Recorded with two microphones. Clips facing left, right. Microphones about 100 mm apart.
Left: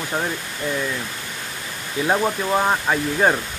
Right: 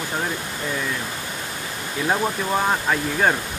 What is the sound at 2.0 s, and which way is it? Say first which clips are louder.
Speech: left 2 dB; 10° left (ahead or behind).